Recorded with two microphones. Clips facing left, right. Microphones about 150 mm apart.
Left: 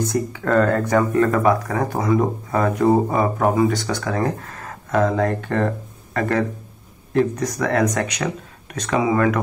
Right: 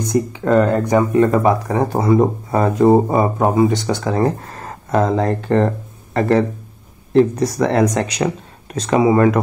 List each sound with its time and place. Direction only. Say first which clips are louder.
0.0 s speech: right 4 dB; 20° right (ahead or behind)